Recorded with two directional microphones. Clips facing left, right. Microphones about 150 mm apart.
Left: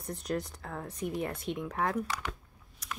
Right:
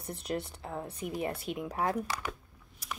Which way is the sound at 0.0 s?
30° right (ahead or behind).